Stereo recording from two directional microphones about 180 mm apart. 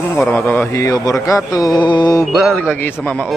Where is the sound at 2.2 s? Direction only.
Centre (ahead or behind).